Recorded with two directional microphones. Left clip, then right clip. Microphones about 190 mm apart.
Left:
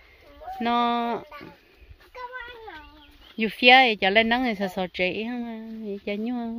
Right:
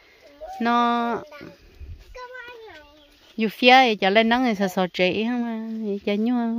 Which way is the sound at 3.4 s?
35° right (ahead or behind).